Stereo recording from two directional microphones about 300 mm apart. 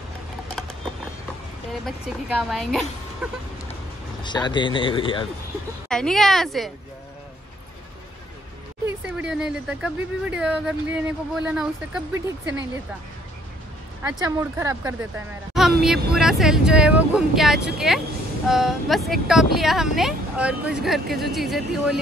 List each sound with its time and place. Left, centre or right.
1.9 s speech: centre
4.2 s speech: centre
5.9 s speech: centre
8.8 s speech: centre
14.0 s speech: centre